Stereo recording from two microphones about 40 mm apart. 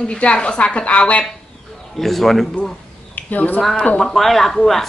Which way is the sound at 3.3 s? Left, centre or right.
Left.